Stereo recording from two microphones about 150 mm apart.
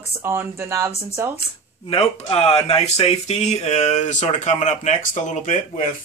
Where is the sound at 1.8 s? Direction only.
40° left (ahead or behind).